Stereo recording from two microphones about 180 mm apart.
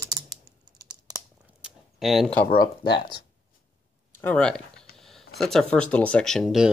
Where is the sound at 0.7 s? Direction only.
20° right (ahead or behind).